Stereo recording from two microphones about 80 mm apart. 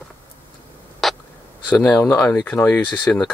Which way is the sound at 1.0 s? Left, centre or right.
Centre.